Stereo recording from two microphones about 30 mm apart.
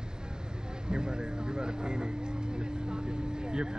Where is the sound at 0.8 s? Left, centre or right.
Right.